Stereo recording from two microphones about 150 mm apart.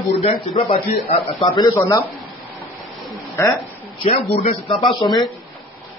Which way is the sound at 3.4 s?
20° left (ahead or behind).